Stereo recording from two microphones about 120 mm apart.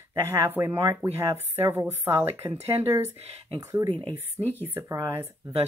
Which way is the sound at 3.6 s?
25° right (ahead or behind).